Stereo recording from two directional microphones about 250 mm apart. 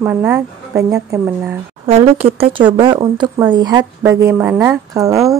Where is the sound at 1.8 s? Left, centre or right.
Right.